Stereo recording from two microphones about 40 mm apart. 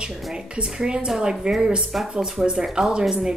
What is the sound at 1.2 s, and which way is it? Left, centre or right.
Speech, right.